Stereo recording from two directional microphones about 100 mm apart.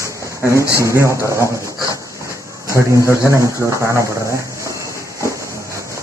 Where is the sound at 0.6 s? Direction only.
30° left (ahead or behind).